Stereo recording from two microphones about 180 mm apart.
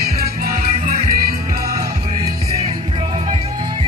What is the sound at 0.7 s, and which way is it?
Music, 40° right (ahead or behind).